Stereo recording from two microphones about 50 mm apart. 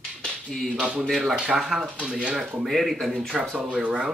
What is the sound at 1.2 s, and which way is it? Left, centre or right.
Speech, centre.